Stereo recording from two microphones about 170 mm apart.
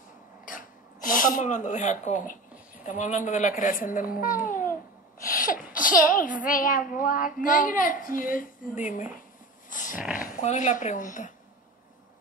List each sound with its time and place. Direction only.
0.5 s a woman's voice: 50° left (ahead or behind)
5.2 s sneeze: 50° left (ahead or behind)
5.7 s a woman's voice: 55° left (ahead or behind)
9.7 s a sound: 50° left (ahead or behind)
9.9 s speech: 10° right (ahead or behind)
10.3 s a woman's voice: 45° left (ahead or behind)